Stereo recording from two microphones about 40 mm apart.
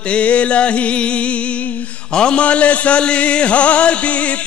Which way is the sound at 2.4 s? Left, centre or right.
Left.